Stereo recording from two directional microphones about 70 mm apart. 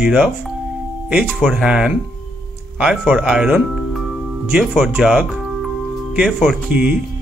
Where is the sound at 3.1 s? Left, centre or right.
Centre.